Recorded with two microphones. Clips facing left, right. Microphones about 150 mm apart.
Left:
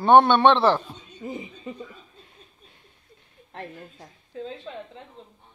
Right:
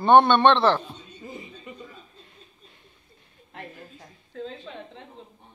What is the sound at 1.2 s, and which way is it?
Speech, 20° left (ahead or behind).